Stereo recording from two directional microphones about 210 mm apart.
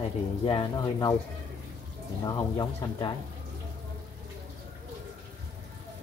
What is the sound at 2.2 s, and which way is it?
Speech, 20° left (ahead or behind).